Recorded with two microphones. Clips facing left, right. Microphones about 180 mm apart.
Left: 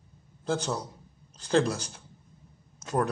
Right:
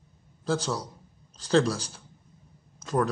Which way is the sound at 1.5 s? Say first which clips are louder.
Right 2 dB; 15° left (ahead or behind).